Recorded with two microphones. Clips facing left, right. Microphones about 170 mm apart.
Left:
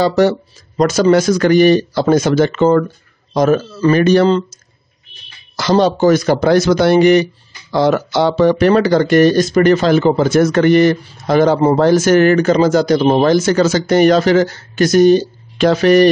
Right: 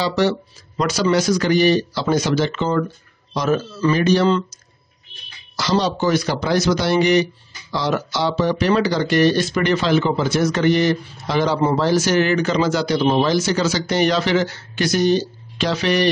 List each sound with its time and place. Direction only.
0.0 s speech: 45° left (ahead or behind)
5.6 s speech: 55° left (ahead or behind)